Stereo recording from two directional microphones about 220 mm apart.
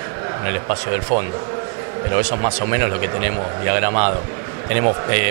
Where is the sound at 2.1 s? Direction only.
20° right (ahead or behind).